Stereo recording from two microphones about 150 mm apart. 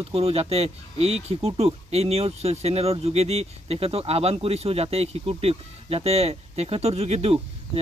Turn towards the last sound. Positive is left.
turn(degrees=-45)  # may be behind; listen again after turning